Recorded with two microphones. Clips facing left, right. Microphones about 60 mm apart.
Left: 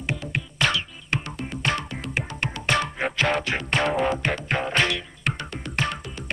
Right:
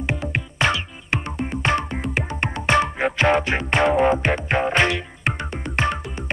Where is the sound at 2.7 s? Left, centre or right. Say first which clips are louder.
Right 5 dB; centre.